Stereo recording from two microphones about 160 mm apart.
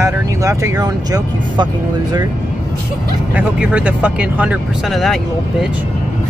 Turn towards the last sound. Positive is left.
turn(degrees=0)  # may be behind; listen again after turning